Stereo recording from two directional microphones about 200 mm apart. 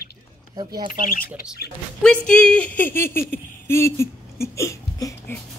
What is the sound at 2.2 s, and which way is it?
Speech, 5° left (ahead or behind).